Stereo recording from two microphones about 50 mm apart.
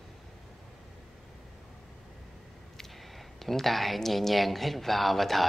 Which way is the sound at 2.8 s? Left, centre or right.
Centre.